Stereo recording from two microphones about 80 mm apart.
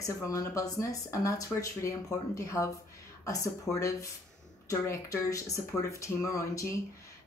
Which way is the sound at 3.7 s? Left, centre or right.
Left.